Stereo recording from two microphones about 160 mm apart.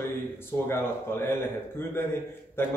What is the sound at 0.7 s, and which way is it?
A man's voice, 15° left (ahead or behind).